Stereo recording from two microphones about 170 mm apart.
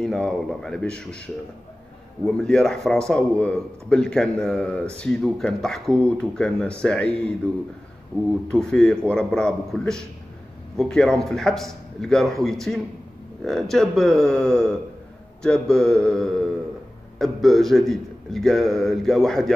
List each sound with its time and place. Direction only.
0.0 s a man's voice: 5° left (ahead or behind)
8.5 s a man's voice: 5° left (ahead or behind)